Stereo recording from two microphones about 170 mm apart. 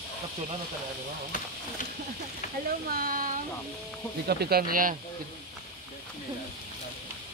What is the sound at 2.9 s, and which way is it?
Speech, 55° right (ahead or behind).